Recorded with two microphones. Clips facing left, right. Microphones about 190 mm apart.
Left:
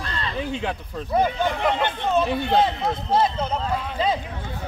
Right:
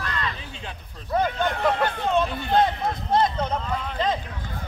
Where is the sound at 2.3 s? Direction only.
65° left (ahead or behind).